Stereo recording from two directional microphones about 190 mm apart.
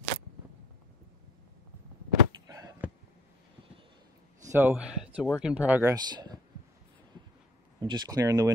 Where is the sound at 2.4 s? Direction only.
20° right (ahead or behind).